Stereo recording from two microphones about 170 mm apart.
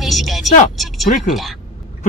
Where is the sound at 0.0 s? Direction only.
Centre (ahead or behind).